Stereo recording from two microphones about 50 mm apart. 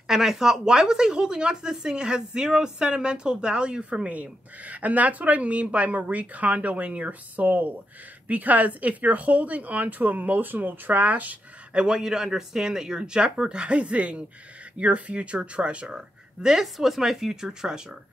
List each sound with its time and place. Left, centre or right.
0.0 s a woman's voice: centre; by 11.3 s right
11.7 s a woman's voice: centre
16.4 s speech: centre